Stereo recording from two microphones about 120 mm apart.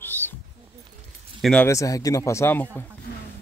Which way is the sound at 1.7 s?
30° left (ahead or behind).